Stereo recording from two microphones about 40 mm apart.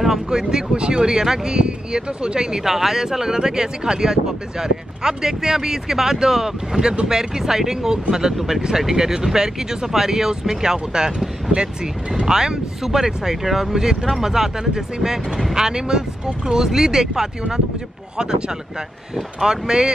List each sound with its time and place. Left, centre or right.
0.3 s speech: centre
2.6 s speech: centre